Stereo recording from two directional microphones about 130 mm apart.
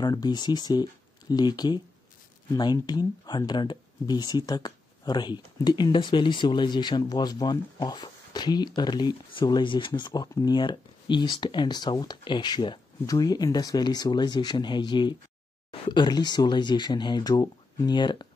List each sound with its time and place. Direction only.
0.0 s speech: 30° left (ahead or behind)